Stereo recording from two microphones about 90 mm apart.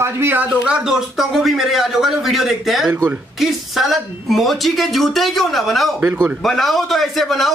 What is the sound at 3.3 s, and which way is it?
A man's voice, centre (ahead or behind).